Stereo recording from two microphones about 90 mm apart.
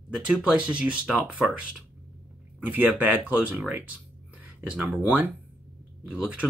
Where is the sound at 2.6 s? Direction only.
20° right (ahead or behind).